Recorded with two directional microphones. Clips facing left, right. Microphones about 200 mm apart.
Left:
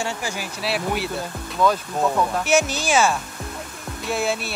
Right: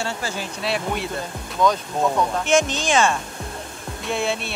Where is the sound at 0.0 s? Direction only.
15° left (ahead or behind).